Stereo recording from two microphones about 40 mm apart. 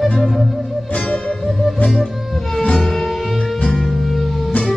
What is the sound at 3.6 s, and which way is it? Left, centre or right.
Music, left.